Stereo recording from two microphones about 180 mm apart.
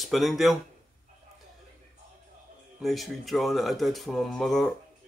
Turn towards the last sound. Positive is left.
turn(degrees=5)  # may be behind; listen again after turning